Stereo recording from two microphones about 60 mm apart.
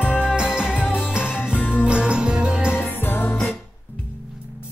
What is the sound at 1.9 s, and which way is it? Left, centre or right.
Music, centre.